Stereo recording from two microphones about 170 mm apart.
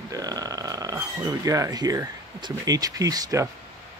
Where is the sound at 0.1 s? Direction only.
20° right (ahead or behind).